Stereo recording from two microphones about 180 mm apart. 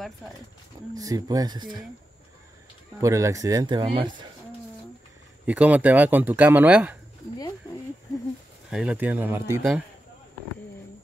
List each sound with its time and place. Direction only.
0.9 s speech: 20° right (ahead or behind)
3.0 s speech: 15° right (ahead or behind)
5.5 s speech: 10° right (ahead or behind)
8.6 s speech: 5° right (ahead or behind)